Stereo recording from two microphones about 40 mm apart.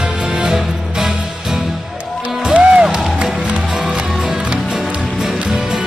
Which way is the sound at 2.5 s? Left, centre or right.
Right.